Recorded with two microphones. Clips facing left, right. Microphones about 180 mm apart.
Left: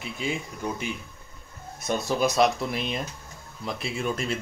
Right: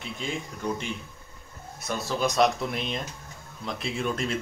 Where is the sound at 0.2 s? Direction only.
5° left (ahead or behind).